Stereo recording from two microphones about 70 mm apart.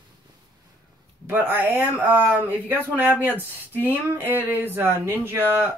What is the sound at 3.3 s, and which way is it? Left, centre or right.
Speech, left.